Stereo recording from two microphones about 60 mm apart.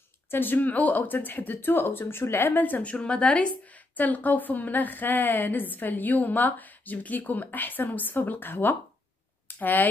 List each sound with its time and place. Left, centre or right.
0.3 s speech: left